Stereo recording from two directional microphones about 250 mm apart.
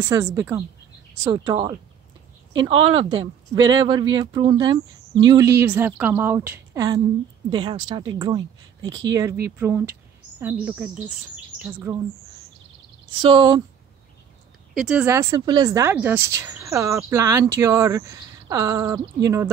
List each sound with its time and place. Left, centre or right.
0.0 s speech: centre
13.2 s speech: centre
14.7 s speech: centre